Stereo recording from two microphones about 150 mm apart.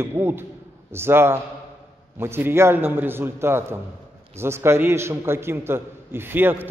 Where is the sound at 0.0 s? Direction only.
15° right (ahead or behind).